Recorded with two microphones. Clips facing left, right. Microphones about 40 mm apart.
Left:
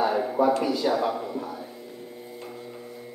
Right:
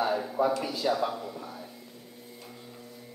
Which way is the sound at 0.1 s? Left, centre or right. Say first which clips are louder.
Left 5 dB; left.